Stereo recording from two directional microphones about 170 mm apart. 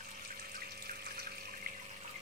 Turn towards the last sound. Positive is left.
turn(degrees=-60)  # may be behind; listen again after turning